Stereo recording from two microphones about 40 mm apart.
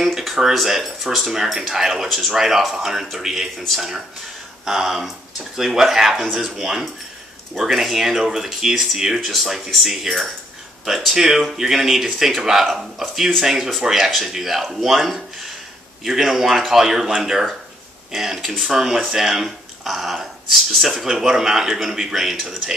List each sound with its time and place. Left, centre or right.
0.2 s speech: centre
4.6 s speech: centre